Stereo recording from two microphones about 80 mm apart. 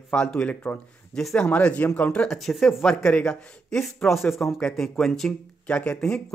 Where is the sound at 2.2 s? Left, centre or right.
Centre.